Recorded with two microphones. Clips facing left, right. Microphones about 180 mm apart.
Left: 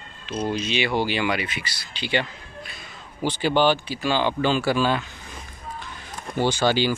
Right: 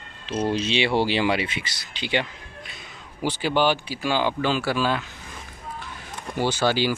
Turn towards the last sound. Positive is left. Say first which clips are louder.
# left 1 dB
turn(degrees=-5)  # may be behind; listen again after turning